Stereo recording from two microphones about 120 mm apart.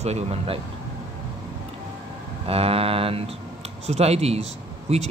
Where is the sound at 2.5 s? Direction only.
55° right (ahead or behind).